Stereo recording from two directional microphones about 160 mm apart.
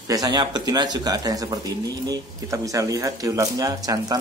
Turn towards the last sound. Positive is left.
turn(degrees=-25)  # may be behind; listen again after turning